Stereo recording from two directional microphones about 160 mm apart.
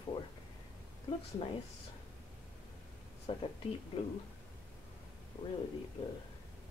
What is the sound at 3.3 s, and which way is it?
Speech, 35° left (ahead or behind).